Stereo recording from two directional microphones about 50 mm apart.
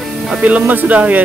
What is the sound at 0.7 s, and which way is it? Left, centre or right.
Speech, right.